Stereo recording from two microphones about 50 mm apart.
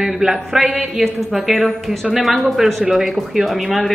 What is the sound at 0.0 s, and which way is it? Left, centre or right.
Speech, centre.